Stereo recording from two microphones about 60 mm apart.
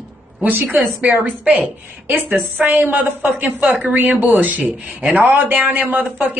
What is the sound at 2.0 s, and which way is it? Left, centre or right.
A woman's voice, right.